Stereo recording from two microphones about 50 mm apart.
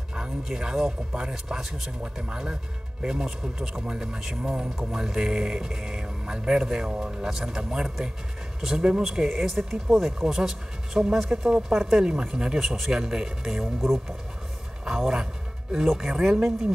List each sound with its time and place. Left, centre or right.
0.4 s speech: centre